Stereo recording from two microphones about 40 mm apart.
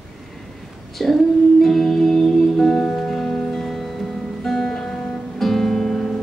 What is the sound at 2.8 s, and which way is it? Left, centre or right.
Music, left.